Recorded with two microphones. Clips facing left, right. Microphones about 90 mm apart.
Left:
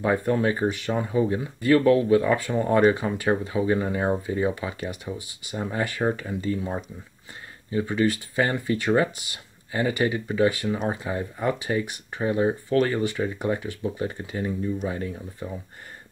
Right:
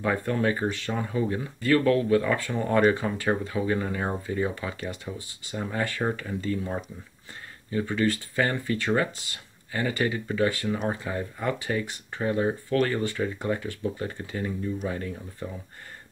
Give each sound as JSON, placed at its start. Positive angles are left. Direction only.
{"t": 0.0, "sound": "speech", "side_deg": 20}